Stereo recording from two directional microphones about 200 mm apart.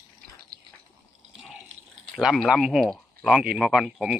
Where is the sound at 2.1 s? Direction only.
Centre (ahead or behind).